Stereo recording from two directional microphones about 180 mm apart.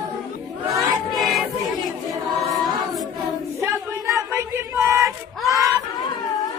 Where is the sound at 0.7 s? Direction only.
Centre (ahead or behind).